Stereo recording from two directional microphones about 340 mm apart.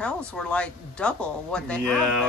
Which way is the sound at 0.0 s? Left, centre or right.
Centre.